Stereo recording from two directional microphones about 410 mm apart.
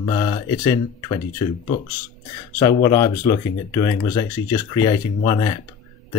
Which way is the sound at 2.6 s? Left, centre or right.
Centre.